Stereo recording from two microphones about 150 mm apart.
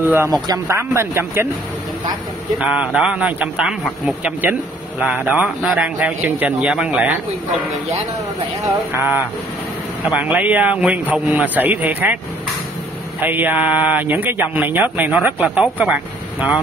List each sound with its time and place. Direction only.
0.0 s a man's voice: 15° right (ahead or behind)
2.6 s a man's voice: 5° right (ahead or behind)
8.6 s a man's voice: 15° right (ahead or behind)
13.2 s a man's voice: 10° right (ahead or behind)